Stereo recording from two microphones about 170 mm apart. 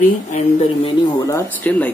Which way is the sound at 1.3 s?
15° left (ahead or behind).